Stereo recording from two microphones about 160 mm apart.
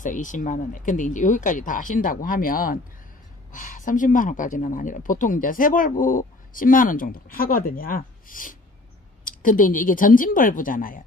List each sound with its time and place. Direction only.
0.0 s speech: 55° left (ahead or behind)